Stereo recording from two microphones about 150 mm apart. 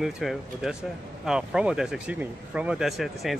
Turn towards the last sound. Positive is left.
turn(degrees=0)  # may be behind; listen again after turning